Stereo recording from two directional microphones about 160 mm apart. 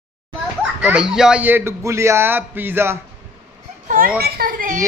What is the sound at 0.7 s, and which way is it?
A man's voice, 5° right (ahead or behind).